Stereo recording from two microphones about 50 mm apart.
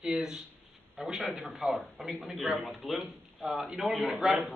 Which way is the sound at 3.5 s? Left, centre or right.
Centre.